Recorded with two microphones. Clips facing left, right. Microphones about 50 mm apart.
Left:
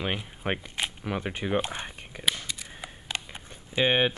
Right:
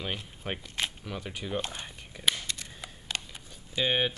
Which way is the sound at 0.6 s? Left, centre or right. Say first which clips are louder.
Left 1 dB; centre.